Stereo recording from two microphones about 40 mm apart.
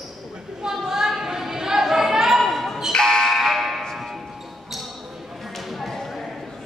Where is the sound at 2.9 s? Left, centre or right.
Centre.